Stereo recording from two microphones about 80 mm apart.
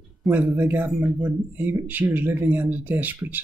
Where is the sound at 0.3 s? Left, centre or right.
Right.